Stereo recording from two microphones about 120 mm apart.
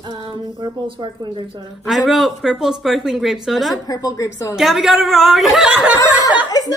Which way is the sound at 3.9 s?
30° left (ahead or behind).